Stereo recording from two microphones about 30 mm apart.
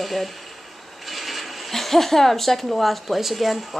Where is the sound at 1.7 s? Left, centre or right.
Centre.